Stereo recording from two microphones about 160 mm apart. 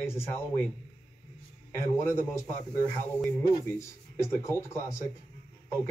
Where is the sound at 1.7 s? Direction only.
15° left (ahead or behind).